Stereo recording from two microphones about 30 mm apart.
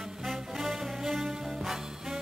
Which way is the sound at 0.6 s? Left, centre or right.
Centre.